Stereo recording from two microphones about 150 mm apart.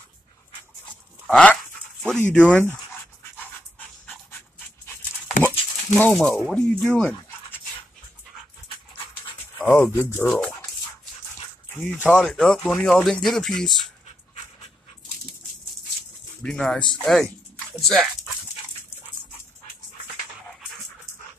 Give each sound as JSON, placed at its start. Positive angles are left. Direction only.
{"t": 1.2, "sound": "dog", "side_deg": 5}
{"t": 2.1, "sound": "speech", "side_deg": 10}
{"t": 5.9, "sound": "speech", "side_deg": 5}
{"t": 9.6, "sound": "speech", "side_deg": 10}
{"t": 11.7, "sound": "speech", "side_deg": 5}
{"t": 16.4, "sound": "speech", "side_deg": 5}